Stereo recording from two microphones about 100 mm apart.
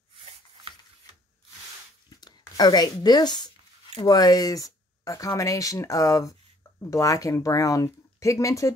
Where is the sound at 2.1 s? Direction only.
45° left (ahead or behind).